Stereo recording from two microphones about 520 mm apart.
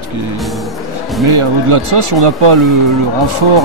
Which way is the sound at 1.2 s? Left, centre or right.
Right.